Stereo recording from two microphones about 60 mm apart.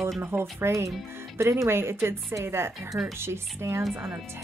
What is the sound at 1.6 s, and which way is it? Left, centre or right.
Speech, right.